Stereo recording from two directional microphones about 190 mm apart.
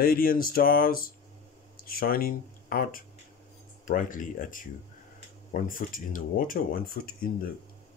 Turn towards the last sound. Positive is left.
turn(degrees=50)  # may be behind; listen again after turning